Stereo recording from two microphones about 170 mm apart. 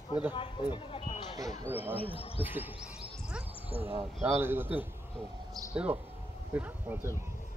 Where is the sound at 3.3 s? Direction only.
5° right (ahead or behind).